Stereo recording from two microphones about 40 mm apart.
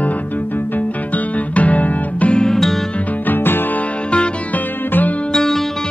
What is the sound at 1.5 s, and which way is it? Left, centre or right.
Music, left.